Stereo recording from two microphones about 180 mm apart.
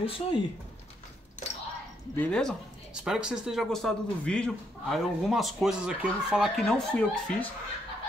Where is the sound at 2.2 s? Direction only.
5° left (ahead or behind).